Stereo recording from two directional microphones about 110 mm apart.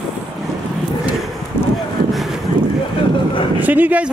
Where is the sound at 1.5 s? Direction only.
20° left (ahead or behind).